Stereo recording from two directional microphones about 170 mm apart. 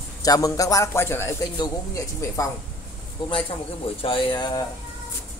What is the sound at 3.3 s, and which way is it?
A man's voice, 35° left (ahead or behind).